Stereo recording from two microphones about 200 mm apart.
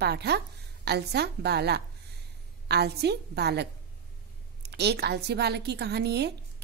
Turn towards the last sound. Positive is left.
turn(degrees=-55)  # may be behind; listen again after turning